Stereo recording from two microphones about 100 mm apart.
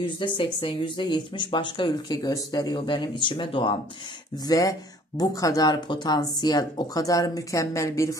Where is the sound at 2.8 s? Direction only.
55° left (ahead or behind).